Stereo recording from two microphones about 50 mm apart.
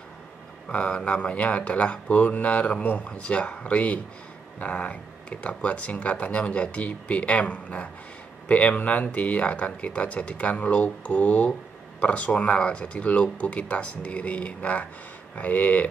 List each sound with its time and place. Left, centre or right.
0.7 s speech: left